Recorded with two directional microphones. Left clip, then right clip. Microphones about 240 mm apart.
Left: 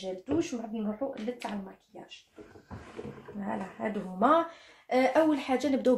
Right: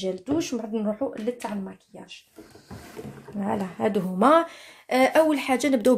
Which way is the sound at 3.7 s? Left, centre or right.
Right.